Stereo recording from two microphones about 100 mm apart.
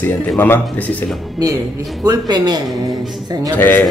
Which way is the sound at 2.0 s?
45° right (ahead or behind).